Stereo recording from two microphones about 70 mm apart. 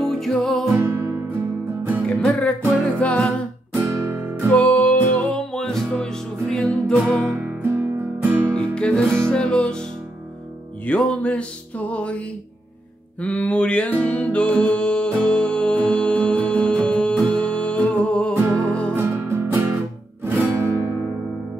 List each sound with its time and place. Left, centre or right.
0.0 s music: centre
0.7 s music: right
2.0 s music: centre
4.1 s music: right
4.5 s music: centre
5.5 s music: centre
7.2 s music: right
8.5 s music: centre
10.9 s music: centre
18.9 s music: right